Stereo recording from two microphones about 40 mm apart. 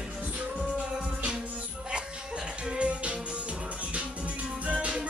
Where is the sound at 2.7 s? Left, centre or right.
Right.